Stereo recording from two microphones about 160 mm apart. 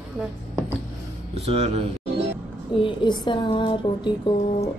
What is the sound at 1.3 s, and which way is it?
Speech, 40° right (ahead or behind).